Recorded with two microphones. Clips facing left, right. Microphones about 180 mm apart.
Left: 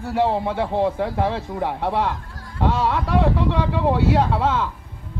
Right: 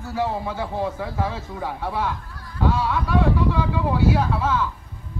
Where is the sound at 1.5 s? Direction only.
75° left (ahead or behind).